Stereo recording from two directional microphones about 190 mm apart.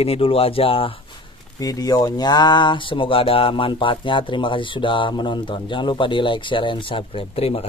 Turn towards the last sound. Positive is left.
turn(degrees=30)  # may be behind; listen again after turning